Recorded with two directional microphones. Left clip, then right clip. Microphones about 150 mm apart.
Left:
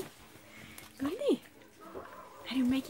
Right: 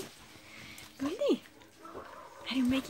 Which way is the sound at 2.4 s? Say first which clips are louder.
Right 1 dB; 15° right (ahead or behind).